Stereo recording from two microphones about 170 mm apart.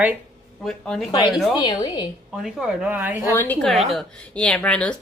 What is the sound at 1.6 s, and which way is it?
Speech, 25° left (ahead or behind).